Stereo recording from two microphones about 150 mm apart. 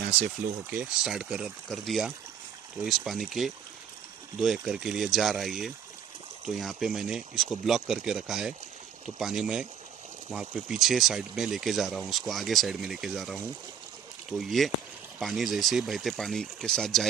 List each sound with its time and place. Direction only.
0.7 s speech: 5° right (ahead or behind)